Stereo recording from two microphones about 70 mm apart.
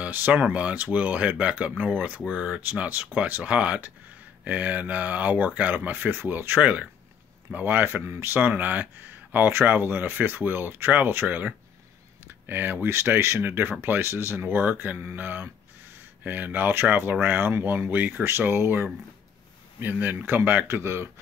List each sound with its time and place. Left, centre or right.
0.0 s speech: right
6.6 s speech: right
20.6 s speech: right